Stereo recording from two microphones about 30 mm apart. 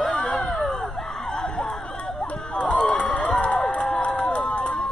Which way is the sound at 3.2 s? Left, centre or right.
Left.